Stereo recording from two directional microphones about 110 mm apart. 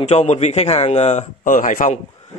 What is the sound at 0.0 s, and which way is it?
Speech, 90° left.